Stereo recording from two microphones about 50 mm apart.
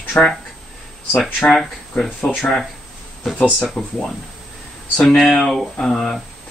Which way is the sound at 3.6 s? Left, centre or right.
Centre.